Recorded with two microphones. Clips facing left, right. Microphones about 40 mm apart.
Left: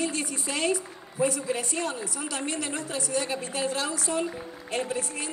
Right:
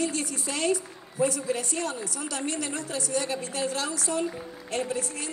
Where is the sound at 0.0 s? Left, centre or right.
Left.